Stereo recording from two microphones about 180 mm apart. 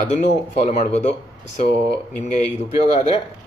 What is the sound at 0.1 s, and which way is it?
Speech, 40° left (ahead or behind).